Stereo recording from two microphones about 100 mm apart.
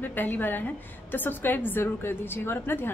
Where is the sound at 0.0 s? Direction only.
20° left (ahead or behind).